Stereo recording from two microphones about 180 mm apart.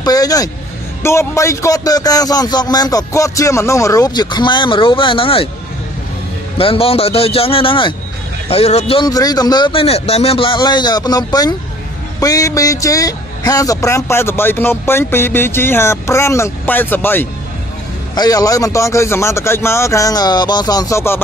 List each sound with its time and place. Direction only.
0.0 s a man's voice: 20° left (ahead or behind)
6.6 s a man's voice: 30° left (ahead or behind); by 21.2 s 15° left (ahead or behind)